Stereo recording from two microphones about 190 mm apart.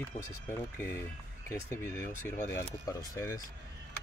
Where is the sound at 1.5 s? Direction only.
15° left (ahead or behind).